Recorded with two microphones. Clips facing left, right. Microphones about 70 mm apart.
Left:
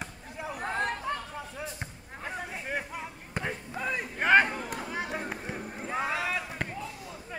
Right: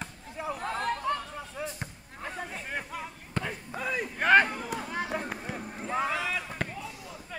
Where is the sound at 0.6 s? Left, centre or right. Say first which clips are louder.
Left 1 dB; centre.